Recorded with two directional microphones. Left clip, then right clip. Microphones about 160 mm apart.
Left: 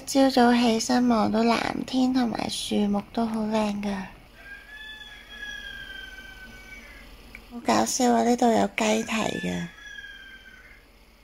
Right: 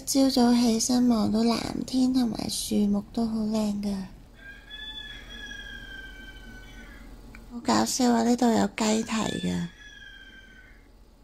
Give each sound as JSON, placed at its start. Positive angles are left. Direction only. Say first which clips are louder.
{"t": 0.0, "sound": "speech", "louder": "left 3 dB", "side_deg": -20}
{"t": 7.6, "sound": "speech", "louder": "left 2 dB", "side_deg": -10}